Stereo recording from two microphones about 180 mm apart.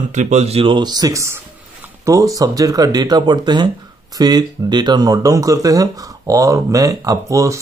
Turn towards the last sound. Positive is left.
turn(degrees=-15)  # may be behind; listen again after turning